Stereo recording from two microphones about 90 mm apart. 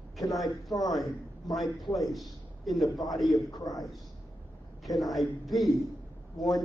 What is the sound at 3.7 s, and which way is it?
Speech, 45° left (ahead or behind).